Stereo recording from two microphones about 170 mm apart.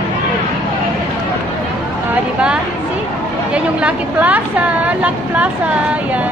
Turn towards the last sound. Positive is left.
turn(degrees=-10)  # may be behind; listen again after turning